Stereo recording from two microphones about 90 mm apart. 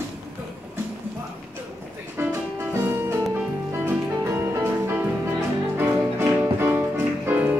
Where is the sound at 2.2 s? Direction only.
30° right (ahead or behind).